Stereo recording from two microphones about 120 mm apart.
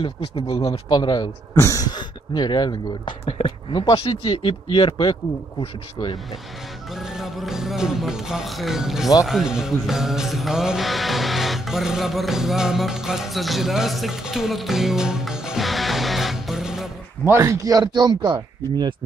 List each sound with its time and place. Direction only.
0.6 s speech: 30° left (ahead or behind)
1.5 s speech: 25° left (ahead or behind); by 5.1 s 45° left (ahead or behind)
7.0 s speech: 5° right (ahead or behind)
17.3 s speech: 25° right (ahead or behind)